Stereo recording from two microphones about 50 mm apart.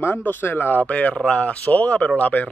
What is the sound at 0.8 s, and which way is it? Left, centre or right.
A man's voice, left.